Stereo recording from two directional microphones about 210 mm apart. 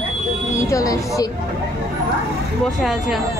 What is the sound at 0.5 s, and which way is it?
Speech, 15° left (ahead or behind).